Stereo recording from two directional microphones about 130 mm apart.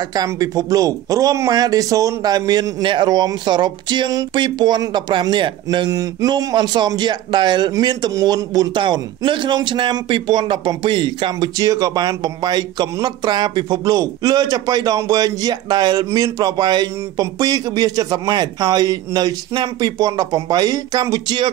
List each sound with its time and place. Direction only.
0.1 s speech: 30° right (ahead or behind)